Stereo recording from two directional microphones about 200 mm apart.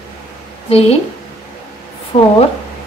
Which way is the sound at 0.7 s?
30° left (ahead or behind).